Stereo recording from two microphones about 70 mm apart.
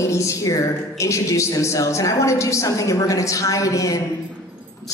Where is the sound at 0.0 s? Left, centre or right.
Left.